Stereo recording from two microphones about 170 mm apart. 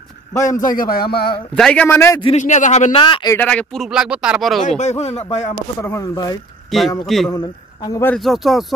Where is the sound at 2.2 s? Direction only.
45° left (ahead or behind).